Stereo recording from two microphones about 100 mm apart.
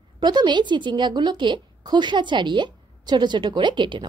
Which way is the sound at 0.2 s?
45° right (ahead or behind).